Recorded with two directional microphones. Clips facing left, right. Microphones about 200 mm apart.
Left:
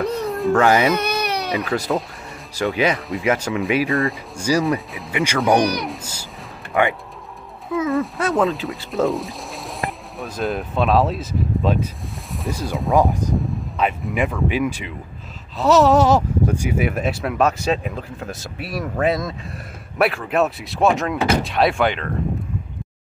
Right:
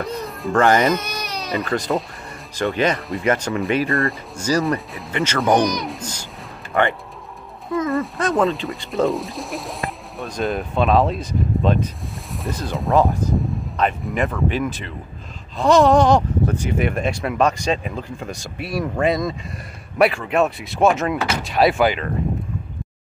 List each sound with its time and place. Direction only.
0.0 s speech: centre (ahead or behind)
0.9 s baby cry: 60° left (ahead or behind)
1.5 s speech: centre (ahead or behind)
4.4 s speech: 10° left (ahead or behind)
4.6 s speech: centre (ahead or behind)